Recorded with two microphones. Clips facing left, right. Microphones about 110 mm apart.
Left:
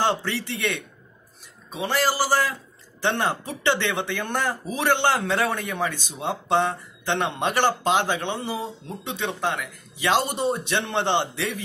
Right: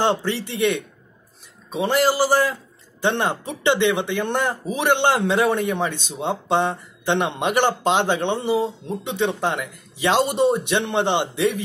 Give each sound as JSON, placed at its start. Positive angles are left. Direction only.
{"t": 0.0, "sound": "speech", "side_deg": -20}